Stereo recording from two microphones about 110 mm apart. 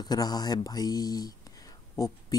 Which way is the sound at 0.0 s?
40° left (ahead or behind).